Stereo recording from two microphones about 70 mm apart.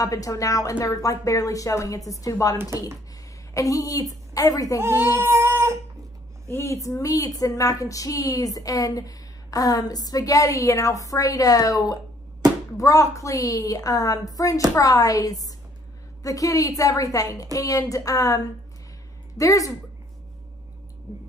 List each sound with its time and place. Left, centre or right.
0.0 s a woman's voice: left
3.5 s a woman's voice: left
5.1 s child singing: right
6.5 s a woman's voice: left